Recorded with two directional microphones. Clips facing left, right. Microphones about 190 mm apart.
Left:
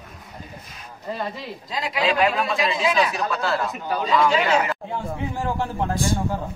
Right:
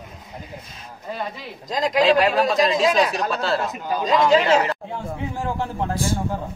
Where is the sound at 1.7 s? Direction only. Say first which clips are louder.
Right 6 dB; 40° right (ahead or behind).